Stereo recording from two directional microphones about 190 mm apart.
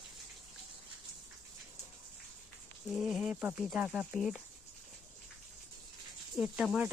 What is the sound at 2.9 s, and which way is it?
Speech, centre (ahead or behind).